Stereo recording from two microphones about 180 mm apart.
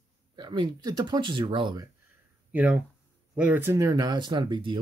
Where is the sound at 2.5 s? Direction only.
10° right (ahead or behind); by 4.8 s 25° right (ahead or behind).